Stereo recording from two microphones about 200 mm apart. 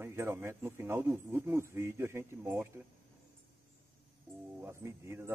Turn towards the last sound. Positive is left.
turn(degrees=-15)  # may be behind; listen again after turning